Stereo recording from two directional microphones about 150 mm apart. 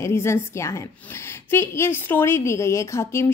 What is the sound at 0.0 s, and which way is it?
A woman's voice, 15° left (ahead or behind).